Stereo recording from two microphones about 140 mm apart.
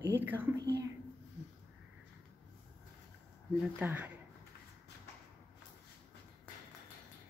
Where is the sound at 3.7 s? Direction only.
10° right (ahead or behind).